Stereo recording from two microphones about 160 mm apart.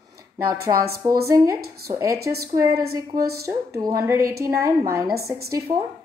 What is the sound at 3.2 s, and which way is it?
Speech, 75° right (ahead or behind).